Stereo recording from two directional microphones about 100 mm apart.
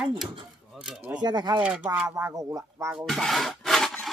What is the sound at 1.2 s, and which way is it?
Speech, 45° right (ahead or behind).